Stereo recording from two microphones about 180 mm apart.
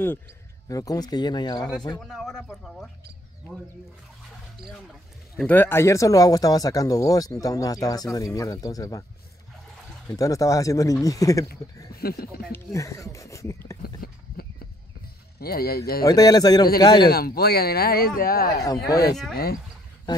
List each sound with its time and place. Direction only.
0.7 s speech: 20° left (ahead or behind)
2.0 s speech: centre (ahead or behind)
5.3 s speech: 5° left (ahead or behind)
10.0 s speech: 20° left (ahead or behind)
12.0 s speech: 55° left (ahead or behind)
12.5 s speech: 15° left (ahead or behind)
13.8 s a sound: 60° left (ahead or behind)
15.3 s speech: 55° left (ahead or behind)
16.0 s speech: 20° left (ahead or behind)
17.1 s speech: 60° left (ahead or behind)
18.9 s speech: 20° left (ahead or behind)